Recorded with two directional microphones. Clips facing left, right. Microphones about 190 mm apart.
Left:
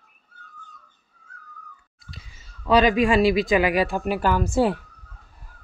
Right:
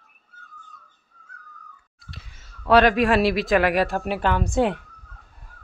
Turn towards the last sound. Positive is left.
turn(degrees=5)  # may be behind; listen again after turning